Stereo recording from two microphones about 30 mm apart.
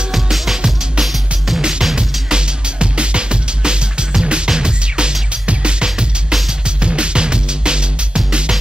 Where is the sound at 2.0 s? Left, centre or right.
Right.